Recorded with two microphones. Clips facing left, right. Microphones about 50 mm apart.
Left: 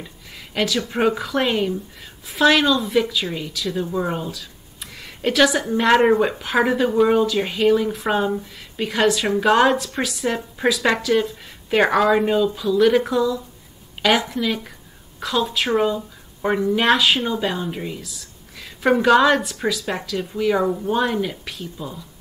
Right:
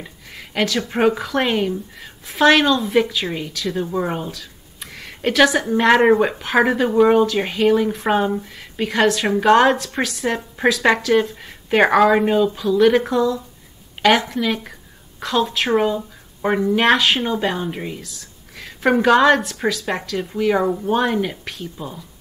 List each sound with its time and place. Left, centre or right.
0.7 s speech: right
1.0 s a woman's voice: centre
4.3 s a sound: centre
5.9 s speech: centre
8.8 s a woman's voice: centre
10.3 s speech: centre
14.3 s a woman's voice: centre
15.7 s a woman's voice: centre
21.7 s speech: right